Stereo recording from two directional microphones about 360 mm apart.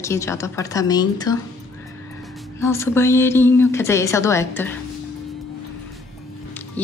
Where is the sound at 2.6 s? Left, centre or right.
Centre.